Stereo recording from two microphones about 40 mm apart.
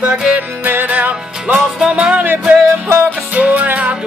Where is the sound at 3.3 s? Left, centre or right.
Right.